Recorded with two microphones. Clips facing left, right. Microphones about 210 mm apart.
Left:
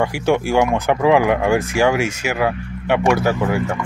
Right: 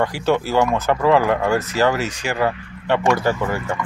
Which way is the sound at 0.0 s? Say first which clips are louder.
Left 2 dB; 10° left (ahead or behind).